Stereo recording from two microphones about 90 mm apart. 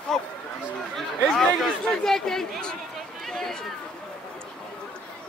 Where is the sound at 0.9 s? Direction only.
5° left (ahead or behind).